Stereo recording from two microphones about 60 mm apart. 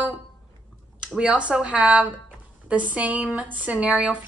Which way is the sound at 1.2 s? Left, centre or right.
Centre.